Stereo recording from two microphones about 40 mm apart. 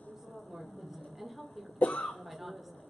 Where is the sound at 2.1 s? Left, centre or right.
Centre.